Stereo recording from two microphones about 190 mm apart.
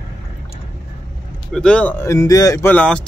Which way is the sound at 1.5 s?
5° left (ahead or behind).